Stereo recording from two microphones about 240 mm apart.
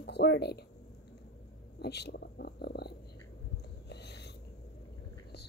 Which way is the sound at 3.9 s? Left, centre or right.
Left.